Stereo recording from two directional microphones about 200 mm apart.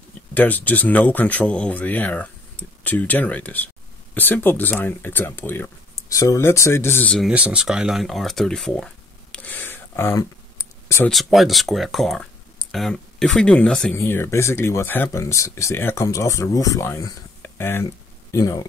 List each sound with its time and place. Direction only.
0.3 s speech: 10° left (ahead or behind)
11.1 s speech: centre (ahead or behind)